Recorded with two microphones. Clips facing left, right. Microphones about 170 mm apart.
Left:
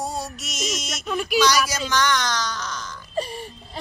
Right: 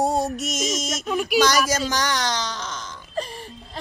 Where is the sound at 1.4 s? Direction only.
45° right (ahead or behind).